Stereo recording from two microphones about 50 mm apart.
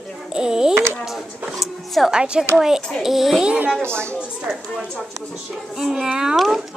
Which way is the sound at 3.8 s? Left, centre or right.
Right.